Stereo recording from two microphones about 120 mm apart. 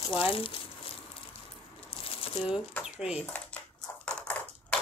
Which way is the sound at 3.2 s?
10° left (ahead or behind).